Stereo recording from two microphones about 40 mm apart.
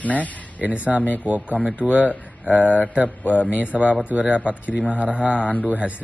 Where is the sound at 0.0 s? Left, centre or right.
Left.